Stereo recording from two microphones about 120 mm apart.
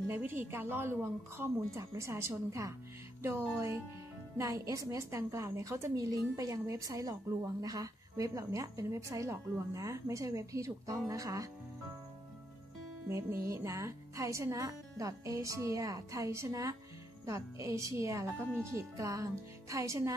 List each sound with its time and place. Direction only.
0.1 s a woman's voice: 15° right (ahead or behind)
13.1 s speech: 25° right (ahead or behind)